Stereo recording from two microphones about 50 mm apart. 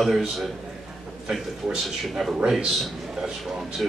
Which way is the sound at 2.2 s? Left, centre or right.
Centre.